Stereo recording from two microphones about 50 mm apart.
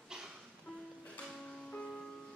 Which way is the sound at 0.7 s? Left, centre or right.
Centre.